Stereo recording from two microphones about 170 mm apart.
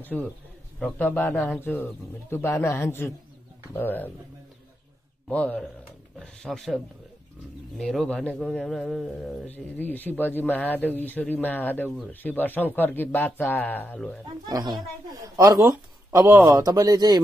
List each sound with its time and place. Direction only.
0.0 s speech: 10° left (ahead or behind)
5.3 s speech: 10° left (ahead or behind)
14.2 s speech: 25° right (ahead or behind)